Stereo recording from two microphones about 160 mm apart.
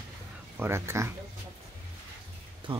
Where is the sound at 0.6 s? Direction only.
15° right (ahead or behind).